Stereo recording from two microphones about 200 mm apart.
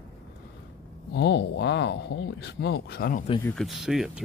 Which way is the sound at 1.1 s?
60° left (ahead or behind).